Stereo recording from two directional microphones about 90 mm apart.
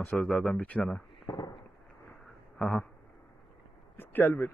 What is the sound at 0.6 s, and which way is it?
Speech, 15° left (ahead or behind).